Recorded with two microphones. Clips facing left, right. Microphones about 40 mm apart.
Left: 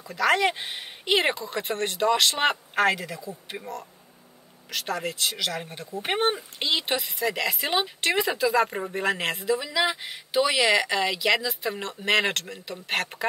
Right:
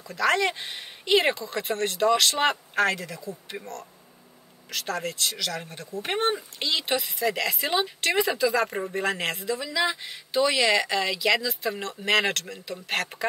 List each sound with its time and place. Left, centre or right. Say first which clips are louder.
0.1 s speech: left 1 dB; centre
5.3 s speech: left 2 dB; centre
6.8 s speech: right 1 dB; centre